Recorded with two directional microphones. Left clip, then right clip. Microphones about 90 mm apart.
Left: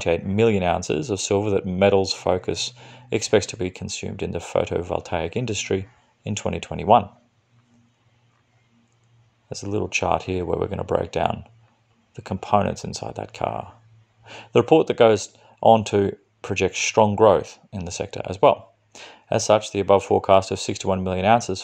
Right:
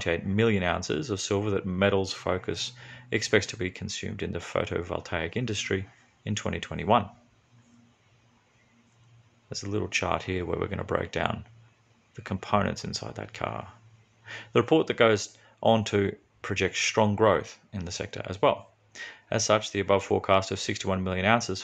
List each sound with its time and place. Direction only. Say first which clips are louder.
0.4 s speech: left 6 dB; 45° left (ahead or behind)
9.5 s speech: left 5 dB; 35° left (ahead or behind)